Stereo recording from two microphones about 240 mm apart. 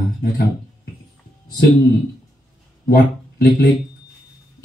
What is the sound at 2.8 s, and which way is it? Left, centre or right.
Speech, left.